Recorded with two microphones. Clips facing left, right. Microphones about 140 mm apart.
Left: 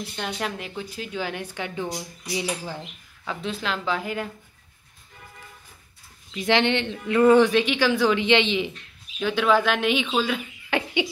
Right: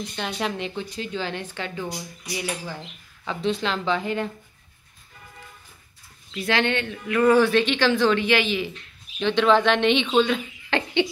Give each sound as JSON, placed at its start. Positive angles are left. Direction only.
{"t": 0.0, "sound": "speech", "side_deg": 5}
{"t": 3.3, "sound": "a woman's voice", "side_deg": 5}
{"t": 6.3, "sound": "speech", "side_deg": 20}
{"t": 9.2, "sound": "speech", "side_deg": 5}